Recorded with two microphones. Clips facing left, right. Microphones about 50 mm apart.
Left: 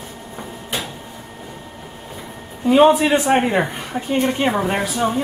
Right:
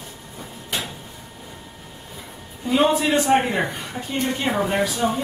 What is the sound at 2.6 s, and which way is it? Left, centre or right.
A woman's voice, left.